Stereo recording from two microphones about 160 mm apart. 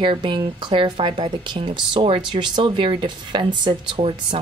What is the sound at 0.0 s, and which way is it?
Speech, 30° right (ahead or behind).